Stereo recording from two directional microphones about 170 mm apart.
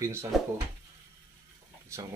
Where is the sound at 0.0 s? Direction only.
15° right (ahead or behind).